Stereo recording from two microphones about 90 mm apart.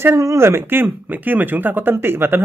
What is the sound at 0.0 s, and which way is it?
Speech, 30° right (ahead or behind).